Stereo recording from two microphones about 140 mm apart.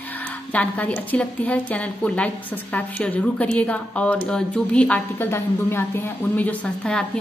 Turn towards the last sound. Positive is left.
turn(degrees=10)  # may be behind; listen again after turning